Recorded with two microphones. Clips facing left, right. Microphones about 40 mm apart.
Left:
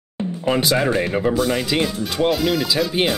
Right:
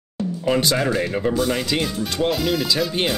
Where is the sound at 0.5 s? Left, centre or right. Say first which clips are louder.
Left 1 dB; centre.